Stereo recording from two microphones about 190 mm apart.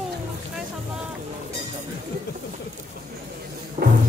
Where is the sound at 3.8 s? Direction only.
35° right (ahead or behind).